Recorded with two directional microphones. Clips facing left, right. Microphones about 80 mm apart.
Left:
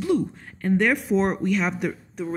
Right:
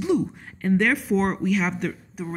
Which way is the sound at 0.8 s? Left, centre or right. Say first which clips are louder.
Left 2 dB; centre.